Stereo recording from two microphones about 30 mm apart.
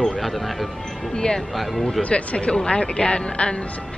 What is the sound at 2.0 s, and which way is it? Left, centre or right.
Speech, left.